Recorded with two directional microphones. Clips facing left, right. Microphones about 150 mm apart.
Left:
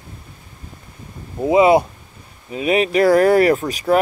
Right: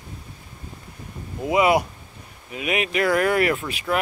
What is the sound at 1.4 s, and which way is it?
Speech, 25° left (ahead or behind).